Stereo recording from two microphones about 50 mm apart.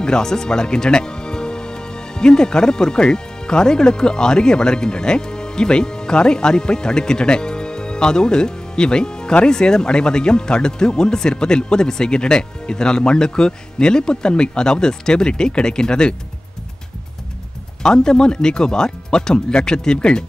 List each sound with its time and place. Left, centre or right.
0.0 s speech: centre
17.8 s speech: centre